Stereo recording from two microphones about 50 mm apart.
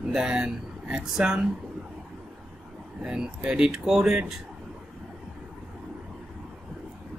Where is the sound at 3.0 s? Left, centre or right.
Centre.